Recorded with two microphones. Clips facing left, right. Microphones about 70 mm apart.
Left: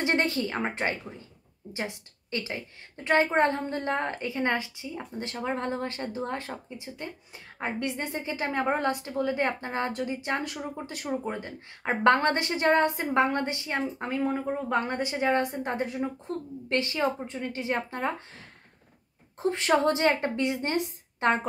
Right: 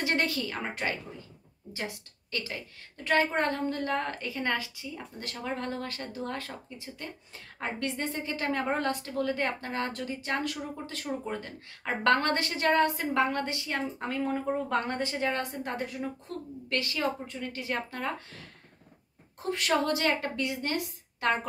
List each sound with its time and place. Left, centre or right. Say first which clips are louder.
0.0 s a woman's voice: left 3 dB; left